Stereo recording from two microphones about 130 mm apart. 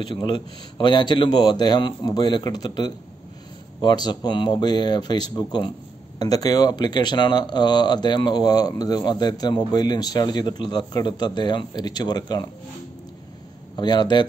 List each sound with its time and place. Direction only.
0.0 s speech: 35° left (ahead or behind)
13.7 s speech: 35° left (ahead or behind)